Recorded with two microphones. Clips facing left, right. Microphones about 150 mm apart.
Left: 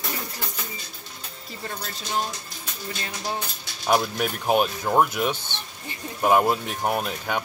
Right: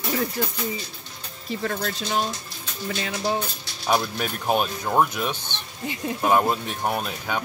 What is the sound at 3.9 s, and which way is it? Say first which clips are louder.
Speech: left 1 dB; 5° left (ahead or behind).